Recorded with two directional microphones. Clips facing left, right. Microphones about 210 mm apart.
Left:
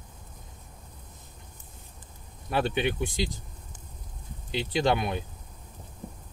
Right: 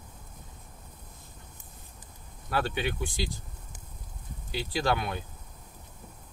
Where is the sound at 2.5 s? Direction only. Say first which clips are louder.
Left 3 dB; 25° left (ahead or behind).